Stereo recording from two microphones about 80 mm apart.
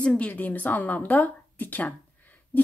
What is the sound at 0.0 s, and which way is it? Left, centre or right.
Speech, centre.